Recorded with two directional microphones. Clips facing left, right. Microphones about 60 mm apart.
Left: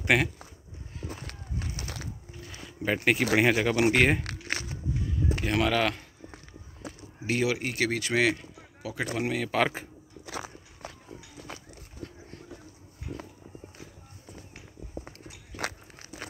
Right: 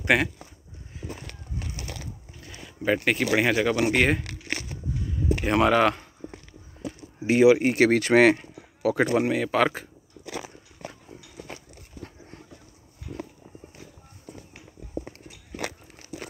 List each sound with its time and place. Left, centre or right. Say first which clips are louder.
0.0 s speech: right 2 dB; centre
2.4 s speech: right 4 dB; centre
5.4 s speech: right 6 dB; centre
7.2 s speech: right 10 dB; centre
7.5 s speech: right 9 dB; right
7.9 s speech: right 7 dB; right
9.2 s speech: right 5 dB; centre